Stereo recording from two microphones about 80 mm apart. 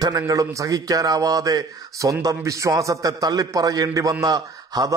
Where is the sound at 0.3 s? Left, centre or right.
Right.